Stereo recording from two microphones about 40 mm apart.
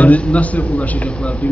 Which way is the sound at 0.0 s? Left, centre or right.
Left.